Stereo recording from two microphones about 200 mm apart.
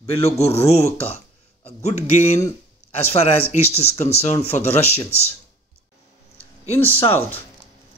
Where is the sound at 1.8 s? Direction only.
35° left (ahead or behind).